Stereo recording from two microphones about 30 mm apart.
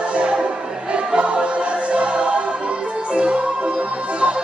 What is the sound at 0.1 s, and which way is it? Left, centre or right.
Music, right.